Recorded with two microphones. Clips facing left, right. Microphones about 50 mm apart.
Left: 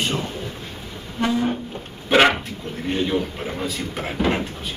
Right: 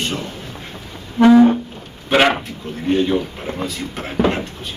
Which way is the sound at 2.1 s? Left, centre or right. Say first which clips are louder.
Right 1 dB; centre.